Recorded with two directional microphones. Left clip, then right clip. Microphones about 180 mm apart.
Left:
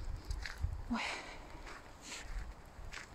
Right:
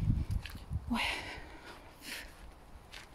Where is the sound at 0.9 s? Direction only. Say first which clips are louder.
Right 5 dB; 25° right (ahead or behind).